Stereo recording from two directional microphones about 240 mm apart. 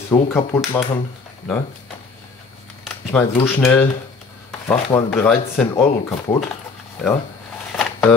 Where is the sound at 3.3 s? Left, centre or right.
Centre.